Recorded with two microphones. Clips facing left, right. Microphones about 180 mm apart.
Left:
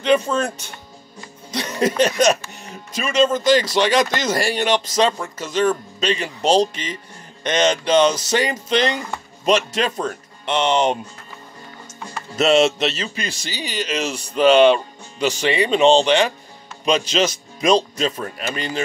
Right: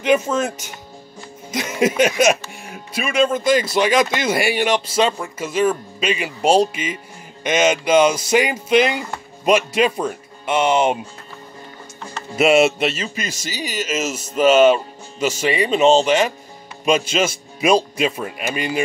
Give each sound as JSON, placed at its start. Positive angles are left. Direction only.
{"t": 0.0, "sound": "speech", "side_deg": -10}
{"t": 12.4, "sound": "speech", "side_deg": -10}
{"t": 14.0, "sound": "speech", "side_deg": -45}
{"t": 14.3, "sound": "speech", "side_deg": -5}